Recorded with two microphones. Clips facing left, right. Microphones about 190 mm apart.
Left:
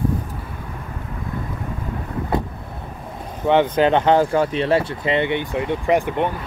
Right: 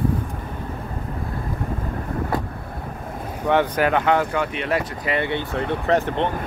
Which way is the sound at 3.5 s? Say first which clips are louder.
Left 3 dB; 20° left (ahead or behind).